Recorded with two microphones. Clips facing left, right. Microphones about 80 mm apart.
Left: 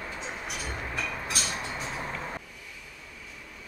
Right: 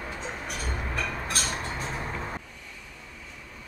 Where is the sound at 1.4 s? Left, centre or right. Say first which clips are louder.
Right 3 dB; right.